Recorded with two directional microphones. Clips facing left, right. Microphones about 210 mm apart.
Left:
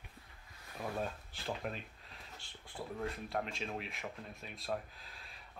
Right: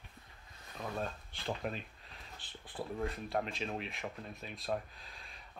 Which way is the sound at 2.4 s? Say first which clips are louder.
Right 4 dB; centre (ahead or behind).